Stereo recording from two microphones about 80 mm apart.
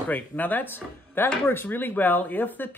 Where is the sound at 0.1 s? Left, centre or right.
Left.